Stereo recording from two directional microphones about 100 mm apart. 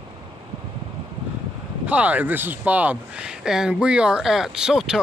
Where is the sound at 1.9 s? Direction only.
15° right (ahead or behind).